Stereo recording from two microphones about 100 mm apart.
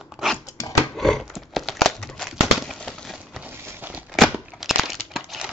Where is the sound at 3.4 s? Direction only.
20° right (ahead or behind).